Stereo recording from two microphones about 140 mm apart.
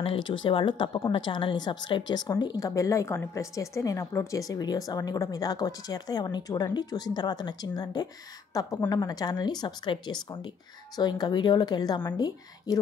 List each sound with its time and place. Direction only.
0.0 s speech: 35° left (ahead or behind)